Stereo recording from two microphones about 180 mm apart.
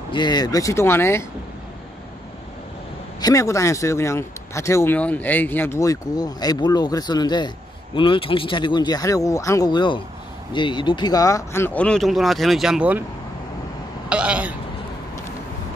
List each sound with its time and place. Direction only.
0.1 s a man's voice: 25° left (ahead or behind)
3.2 s a man's voice: 20° left (ahead or behind); by 13.0 s 5° right (ahead or behind)
14.0 s speech: 5° right (ahead or behind)